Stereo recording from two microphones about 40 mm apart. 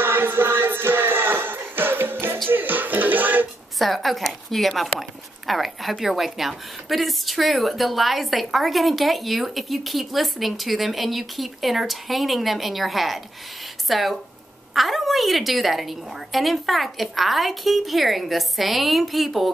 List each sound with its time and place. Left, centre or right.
0.0 s music: right
2.5 s music: right
3.7 s a woman's voice: centre